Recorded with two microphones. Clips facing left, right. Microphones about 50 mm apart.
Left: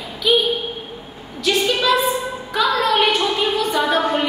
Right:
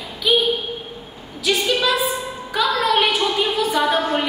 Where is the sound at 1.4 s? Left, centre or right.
Centre.